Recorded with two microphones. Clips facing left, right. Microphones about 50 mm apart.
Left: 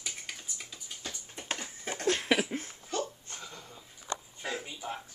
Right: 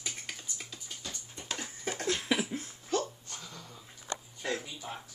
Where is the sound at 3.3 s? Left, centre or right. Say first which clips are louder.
Left 1 dB; left.